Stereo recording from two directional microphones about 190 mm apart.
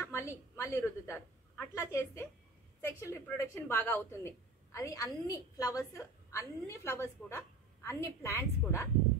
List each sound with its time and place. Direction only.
0.0 s a woman's voice: 15° left (ahead or behind)